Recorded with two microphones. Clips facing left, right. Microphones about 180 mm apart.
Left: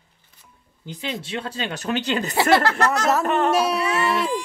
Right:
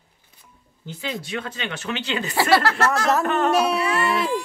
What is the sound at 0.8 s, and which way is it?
Speech, 20° left (ahead or behind).